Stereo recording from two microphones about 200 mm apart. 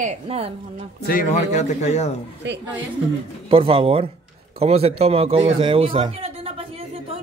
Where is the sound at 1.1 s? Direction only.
40° left (ahead or behind).